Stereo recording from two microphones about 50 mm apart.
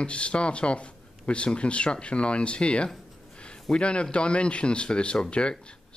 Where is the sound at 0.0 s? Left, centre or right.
Left.